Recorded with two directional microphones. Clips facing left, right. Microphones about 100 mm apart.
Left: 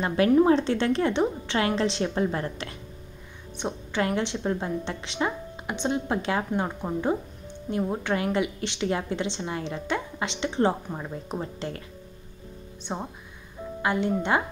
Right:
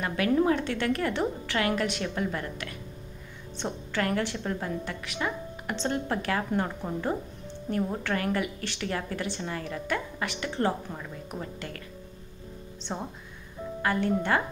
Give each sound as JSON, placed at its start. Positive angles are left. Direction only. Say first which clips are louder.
{"t": 0.0, "sound": "a woman's voice", "louder": "left 5 dB", "side_deg": 30}
{"t": 3.5, "sound": "a woman's voice", "louder": "left 3 dB", "side_deg": 20}
{"t": 5.8, "sound": "a woman's voice", "louder": "left 3 dB", "side_deg": 15}
{"t": 12.9, "sound": "a woman's voice", "louder": "left 2 dB", "side_deg": 10}